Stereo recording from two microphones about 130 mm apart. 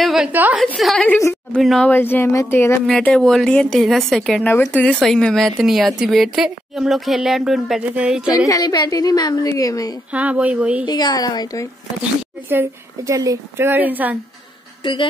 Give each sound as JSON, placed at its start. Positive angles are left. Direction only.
{"t": 0.0, "sound": "a sound", "side_deg": -5}
{"t": 0.3, "sound": "a woman's voice", "side_deg": -15}
{"t": 0.7, "sound": "a woman's voice", "side_deg": 0}
{"t": 1.9, "sound": "speech", "side_deg": 15}
{"t": 2.9, "sound": "a woman's voice", "side_deg": 5}
{"t": 4.5, "sound": "speech", "side_deg": 10}
{"t": 4.9, "sound": "a woman's voice", "side_deg": 0}
{"t": 8.5, "sound": "a woman's voice", "side_deg": 30}
{"t": 10.1, "sound": "a woman's voice", "side_deg": -10}
{"t": 10.9, "sound": "speech", "side_deg": 30}
{"t": 12.4, "sound": "a woman's voice", "side_deg": -20}
{"t": 14.8, "sound": "a woman's voice", "side_deg": 35}